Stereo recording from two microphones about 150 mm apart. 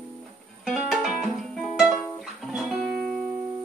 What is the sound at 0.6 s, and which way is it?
Music, centre (ahead or behind).